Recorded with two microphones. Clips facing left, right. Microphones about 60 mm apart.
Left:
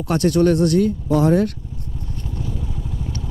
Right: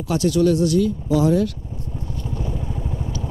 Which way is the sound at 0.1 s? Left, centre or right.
Left.